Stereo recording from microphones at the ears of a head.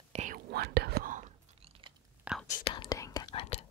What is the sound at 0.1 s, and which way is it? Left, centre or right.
Whispering, right.